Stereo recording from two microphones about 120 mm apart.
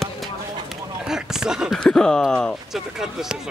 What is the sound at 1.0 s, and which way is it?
Speech, 5° right (ahead or behind).